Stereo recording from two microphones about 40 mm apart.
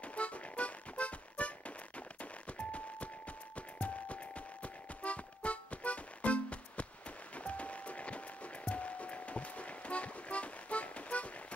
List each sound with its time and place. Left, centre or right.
0.0 s music: left
2.5 s a sound: left
3.5 s music: left